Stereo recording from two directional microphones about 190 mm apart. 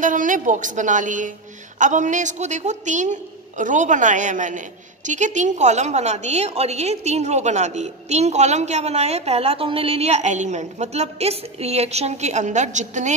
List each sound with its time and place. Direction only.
0.0 s a woman's voice: 45° right (ahead or behind)